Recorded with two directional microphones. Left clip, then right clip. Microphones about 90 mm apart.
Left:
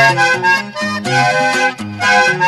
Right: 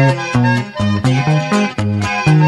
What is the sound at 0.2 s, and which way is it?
Music, 55° left (ahead or behind).